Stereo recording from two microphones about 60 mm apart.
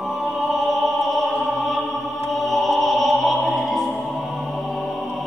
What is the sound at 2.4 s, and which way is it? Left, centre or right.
Opera, centre.